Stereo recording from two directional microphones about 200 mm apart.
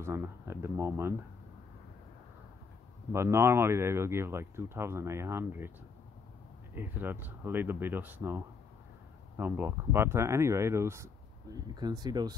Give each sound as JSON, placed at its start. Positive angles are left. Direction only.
{"t": 0.0, "sound": "speech", "side_deg": -15}
{"t": 3.1, "sound": "speech", "side_deg": -15}
{"t": 6.7, "sound": "speech", "side_deg": -10}